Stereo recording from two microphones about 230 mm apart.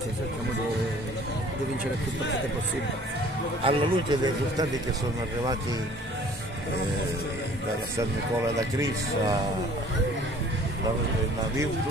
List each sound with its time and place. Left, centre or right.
3.6 s a man's voice: centre